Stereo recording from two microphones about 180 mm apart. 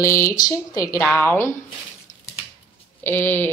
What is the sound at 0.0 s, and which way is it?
A woman's voice, 15° left (ahead or behind).